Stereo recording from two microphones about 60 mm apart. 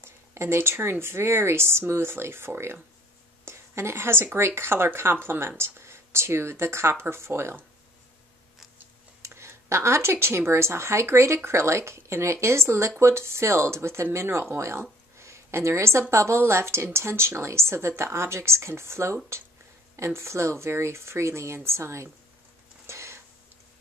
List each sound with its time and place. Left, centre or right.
0.0 s speech: right
9.2 s speech: right
22.8 s a sound: right